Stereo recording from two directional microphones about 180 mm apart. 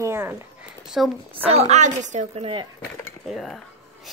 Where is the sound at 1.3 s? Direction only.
35° right (ahead or behind).